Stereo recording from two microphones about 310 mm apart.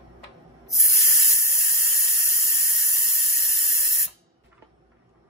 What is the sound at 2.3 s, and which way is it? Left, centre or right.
Squeal, left.